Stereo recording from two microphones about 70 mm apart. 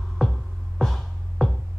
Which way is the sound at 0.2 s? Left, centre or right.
Centre.